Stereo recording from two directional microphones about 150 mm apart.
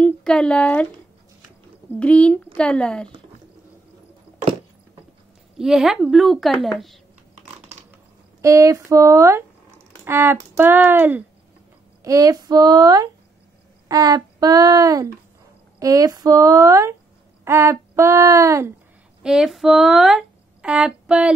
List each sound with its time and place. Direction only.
0.0 s speech: 5° left (ahead or behind)
1.9 s a woman's voice: 10° left (ahead or behind)
5.6 s a woman's voice: 5° right (ahead or behind)
8.4 s speech: 20° right (ahead or behind)
12.0 s speech: 20° right (ahead or behind)
19.2 s speech: 5° right (ahead or behind)